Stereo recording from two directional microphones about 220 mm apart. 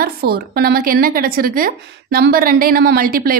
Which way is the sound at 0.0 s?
45° right (ahead or behind).